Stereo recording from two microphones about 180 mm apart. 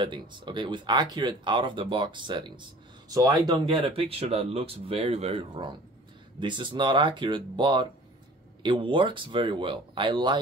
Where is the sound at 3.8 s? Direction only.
30° right (ahead or behind).